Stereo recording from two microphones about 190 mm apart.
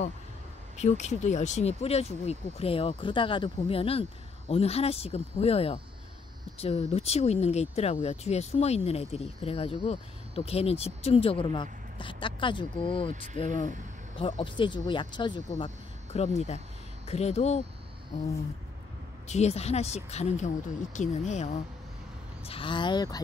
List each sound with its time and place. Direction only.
0.7 s speech: 35° left (ahead or behind)
13.1 s speech: 40° right (ahead or behind)
13.4 s speech: 25° left (ahead or behind)
19.2 s speech: 35° left (ahead or behind)